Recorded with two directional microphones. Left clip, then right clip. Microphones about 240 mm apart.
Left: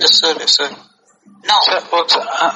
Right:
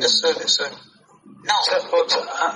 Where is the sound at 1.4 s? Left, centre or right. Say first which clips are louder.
Left 6 dB; left.